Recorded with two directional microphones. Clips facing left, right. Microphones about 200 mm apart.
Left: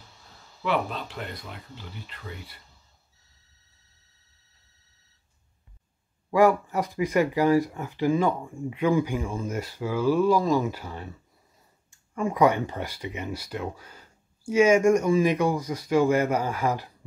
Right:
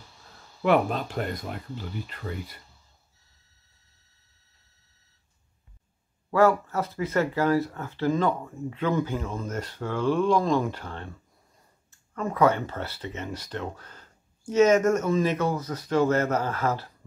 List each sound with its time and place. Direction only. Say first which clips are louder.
0.6 s speech: right 5 dB; 50° right (ahead or behind)
6.3 s speech: left 1 dB; 15° left (ahead or behind)